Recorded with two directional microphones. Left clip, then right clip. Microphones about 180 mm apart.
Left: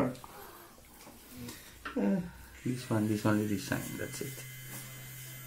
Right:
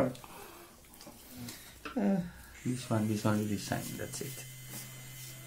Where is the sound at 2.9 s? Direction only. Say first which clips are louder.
Left 2 dB; 10° right (ahead or behind).